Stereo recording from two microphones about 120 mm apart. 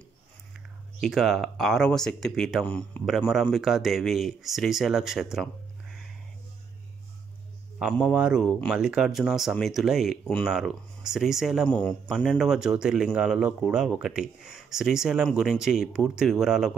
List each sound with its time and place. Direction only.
1.0 s speech: centre (ahead or behind)
7.8 s a man's voice: 10° right (ahead or behind); by 12.4 s 5° left (ahead or behind)
12.4 s speech: 5° right (ahead or behind)